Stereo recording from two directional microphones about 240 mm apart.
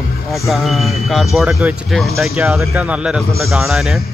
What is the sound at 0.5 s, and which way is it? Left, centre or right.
Speech, centre.